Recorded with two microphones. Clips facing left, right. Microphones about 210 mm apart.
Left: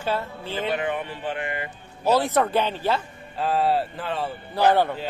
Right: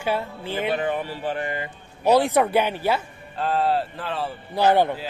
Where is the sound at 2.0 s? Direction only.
15° right (ahead or behind).